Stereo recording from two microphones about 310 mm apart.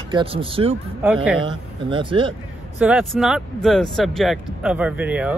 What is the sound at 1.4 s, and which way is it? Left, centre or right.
Speech, centre.